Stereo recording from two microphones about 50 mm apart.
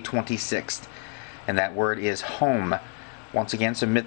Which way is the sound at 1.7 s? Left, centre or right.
Right.